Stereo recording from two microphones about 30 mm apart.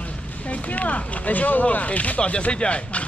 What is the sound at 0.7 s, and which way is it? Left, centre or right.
Speech, left.